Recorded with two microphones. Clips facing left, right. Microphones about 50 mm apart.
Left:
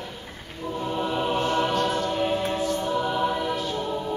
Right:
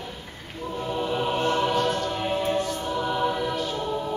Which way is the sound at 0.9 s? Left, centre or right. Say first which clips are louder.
Even; centre.